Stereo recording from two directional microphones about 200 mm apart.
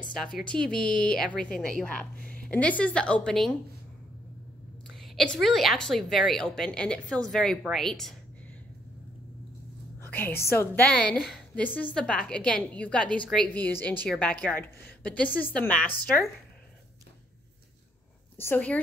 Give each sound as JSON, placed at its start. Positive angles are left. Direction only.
{"t": 0.2, "sound": "a woman's voice", "side_deg": 0}
{"t": 0.8, "sound": "speech", "side_deg": 45}
{"t": 1.1, "sound": "a woman's voice", "side_deg": 5}
{"t": 4.9, "sound": "a woman's voice", "side_deg": 0}
{"t": 9.9, "sound": "a sound", "side_deg": 10}
{"t": 10.4, "sound": "a woman's voice", "side_deg": 10}
{"t": 18.4, "sound": "a woman's voice", "side_deg": 10}